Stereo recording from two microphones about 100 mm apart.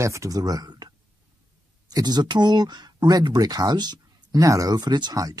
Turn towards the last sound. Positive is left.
turn(degrees=-40)  # may be behind; listen again after turning